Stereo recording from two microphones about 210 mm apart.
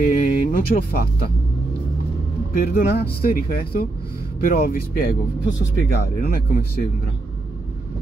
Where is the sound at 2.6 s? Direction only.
45° left (ahead or behind).